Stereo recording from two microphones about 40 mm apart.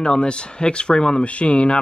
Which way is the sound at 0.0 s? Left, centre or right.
Left.